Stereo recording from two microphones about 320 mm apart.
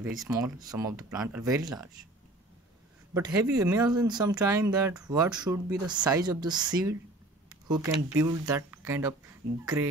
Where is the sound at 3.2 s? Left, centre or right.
Centre.